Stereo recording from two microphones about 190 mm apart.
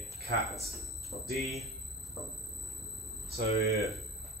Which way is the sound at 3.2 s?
55° right (ahead or behind).